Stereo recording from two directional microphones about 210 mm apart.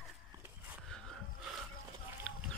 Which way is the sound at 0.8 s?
Centre (ahead or behind).